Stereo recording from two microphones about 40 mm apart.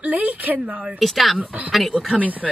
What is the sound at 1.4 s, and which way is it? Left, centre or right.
Speech, right.